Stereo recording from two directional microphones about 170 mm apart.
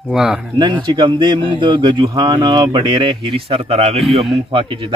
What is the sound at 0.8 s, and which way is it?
Speech, 25° right (ahead or behind).